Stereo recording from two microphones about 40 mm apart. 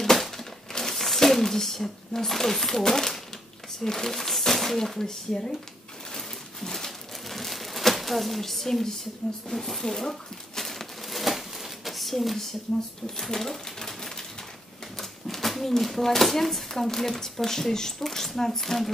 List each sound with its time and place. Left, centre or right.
0.0 s crumpling: centre
3.8 s speech: centre
6.1 s a sound: centre
13.2 s bird: centre
15.0 s speech: centre